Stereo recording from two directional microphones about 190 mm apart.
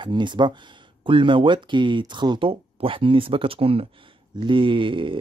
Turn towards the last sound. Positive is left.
turn(degrees=-25)  # may be behind; listen again after turning